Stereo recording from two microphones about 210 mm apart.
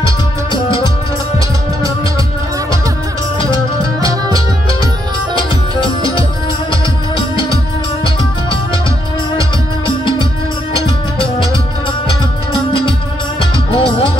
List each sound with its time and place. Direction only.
5.3 s music: 25° left (ahead or behind)
9.4 s music: 25° left (ahead or behind)
13.7 s music: 25° left (ahead or behind)